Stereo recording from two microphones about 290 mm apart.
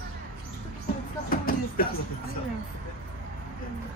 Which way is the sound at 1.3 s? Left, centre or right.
Left.